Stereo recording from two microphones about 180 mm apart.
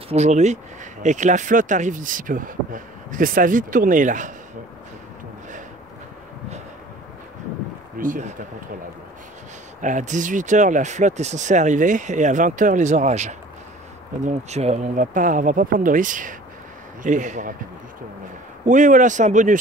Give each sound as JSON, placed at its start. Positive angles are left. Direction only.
{"t": 0.1, "sound": "speech", "side_deg": -40}
{"t": 8.0, "sound": "speech", "side_deg": -45}
{"t": 9.8, "sound": "speech", "side_deg": -45}
{"t": 18.7, "sound": "speech", "side_deg": -45}